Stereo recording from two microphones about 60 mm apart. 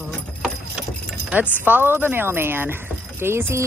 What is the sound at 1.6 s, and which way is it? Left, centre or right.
Speech, right.